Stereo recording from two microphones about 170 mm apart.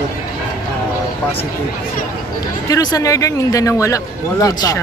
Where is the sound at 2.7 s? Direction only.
20° left (ahead or behind).